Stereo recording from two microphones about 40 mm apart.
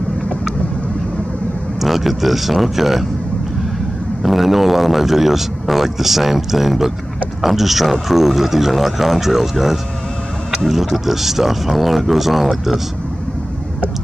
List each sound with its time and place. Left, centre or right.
1.8 s a man's voice: centre
4.2 s a man's voice: centre